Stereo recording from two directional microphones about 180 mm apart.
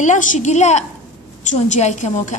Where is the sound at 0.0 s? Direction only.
40° left (ahead or behind).